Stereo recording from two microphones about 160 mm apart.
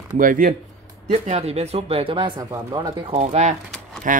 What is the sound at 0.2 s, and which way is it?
Speech, 60° right (ahead or behind).